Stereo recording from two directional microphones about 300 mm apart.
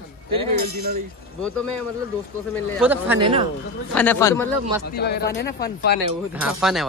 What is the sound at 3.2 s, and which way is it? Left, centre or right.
Speech, centre.